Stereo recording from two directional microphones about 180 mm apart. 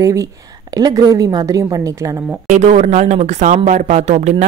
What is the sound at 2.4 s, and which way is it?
Speech, 40° right (ahead or behind).